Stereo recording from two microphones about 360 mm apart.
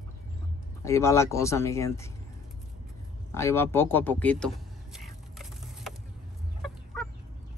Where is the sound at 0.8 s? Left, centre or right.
Centre.